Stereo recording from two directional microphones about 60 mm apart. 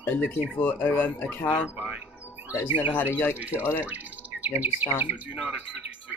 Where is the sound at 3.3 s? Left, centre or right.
Right.